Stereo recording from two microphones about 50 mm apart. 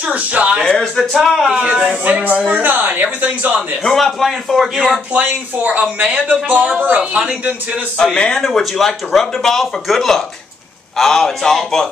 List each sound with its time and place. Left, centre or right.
0.0 s a sound: right
0.7 s a man's voice: centre
1.5 s speech: centre
2.0 s speech: right
3.8 s a man's voice: centre
5.1 s speech: right
8.0 s speech: centre